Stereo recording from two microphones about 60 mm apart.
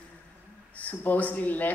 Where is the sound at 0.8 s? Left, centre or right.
Left.